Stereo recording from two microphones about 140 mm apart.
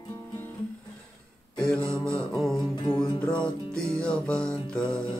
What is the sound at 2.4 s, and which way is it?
Music, 35° left (ahead or behind).